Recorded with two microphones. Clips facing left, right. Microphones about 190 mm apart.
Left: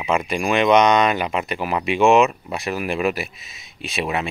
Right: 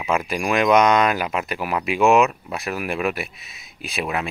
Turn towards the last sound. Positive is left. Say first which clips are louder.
# left 2 dB
turn(degrees=0)  # may be behind; listen again after turning